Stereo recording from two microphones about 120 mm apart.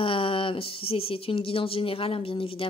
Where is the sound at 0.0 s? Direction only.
45° left (ahead or behind).